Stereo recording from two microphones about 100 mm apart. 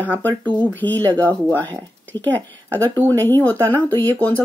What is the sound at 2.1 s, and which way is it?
Speech, 50° right (ahead or behind).